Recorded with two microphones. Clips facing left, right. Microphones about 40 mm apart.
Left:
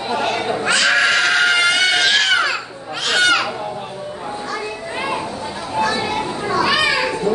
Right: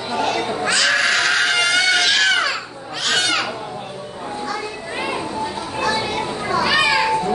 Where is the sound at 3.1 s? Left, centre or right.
Centre.